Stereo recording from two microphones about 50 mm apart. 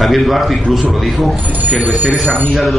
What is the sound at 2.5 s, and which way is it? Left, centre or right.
Speech, centre.